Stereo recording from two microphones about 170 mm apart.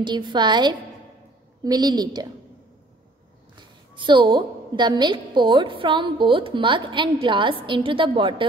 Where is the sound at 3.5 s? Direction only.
30° right (ahead or behind).